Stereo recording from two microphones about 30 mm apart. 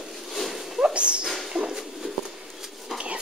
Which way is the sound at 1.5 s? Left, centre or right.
Right.